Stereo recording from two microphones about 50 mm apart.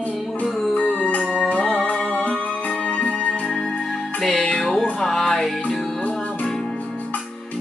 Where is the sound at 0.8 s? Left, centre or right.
Left.